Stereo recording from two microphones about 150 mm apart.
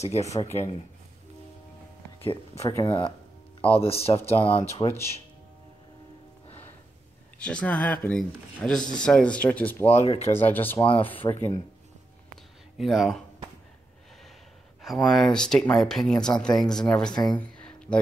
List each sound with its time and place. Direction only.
0.0 s speech: 45° left (ahead or behind)
0.3 s speech: 20° left (ahead or behind)
2.2 s speech: 45° left (ahead or behind)
2.7 s speech: 30° left (ahead or behind)
7.3 s speech: 5° left (ahead or behind)
9.8 s speech: 45° left (ahead or behind)
10.3 s speech: 15° left (ahead or behind)
11.2 s speech: 25° left (ahead or behind)
12.7 s speech: centre (ahead or behind)
14.8 s speech: centre (ahead or behind)
17.4 s a sound: 5° left (ahead or behind)